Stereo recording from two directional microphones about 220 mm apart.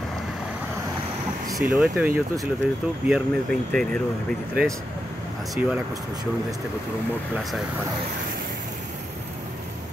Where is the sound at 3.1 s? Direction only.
Centre (ahead or behind).